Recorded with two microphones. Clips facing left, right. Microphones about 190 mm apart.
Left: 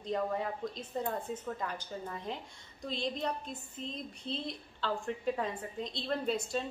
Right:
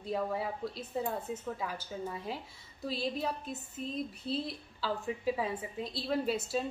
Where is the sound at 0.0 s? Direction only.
5° right (ahead or behind).